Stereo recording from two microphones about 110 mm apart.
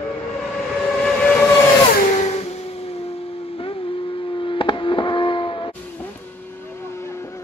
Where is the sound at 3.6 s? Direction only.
55° left (ahead or behind).